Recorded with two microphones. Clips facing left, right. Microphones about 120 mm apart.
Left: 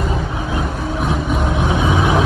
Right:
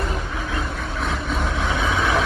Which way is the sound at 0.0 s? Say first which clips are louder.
Left 5 dB; 20° left (ahead or behind).